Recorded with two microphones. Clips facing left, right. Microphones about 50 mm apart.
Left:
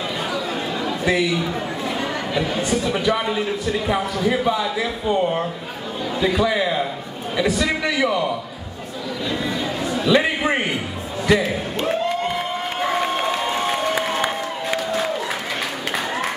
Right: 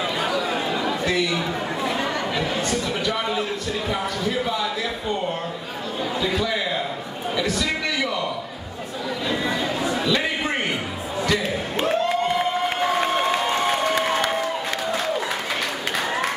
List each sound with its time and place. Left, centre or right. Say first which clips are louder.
0.2 s chatter: right 1 dB; centre
2.6 s a man's voice: left 4 dB; centre
9.3 s chatter: even; centre
10.0 s a sound: left 10 dB; centre
15.9 s applause: even; centre